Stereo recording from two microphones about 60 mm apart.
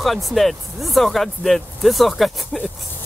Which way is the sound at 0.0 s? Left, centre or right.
Centre.